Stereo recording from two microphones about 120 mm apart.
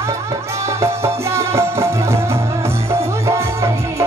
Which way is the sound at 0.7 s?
25° right (ahead or behind).